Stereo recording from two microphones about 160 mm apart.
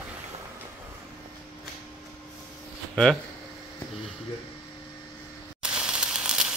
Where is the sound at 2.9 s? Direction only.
5° left (ahead or behind).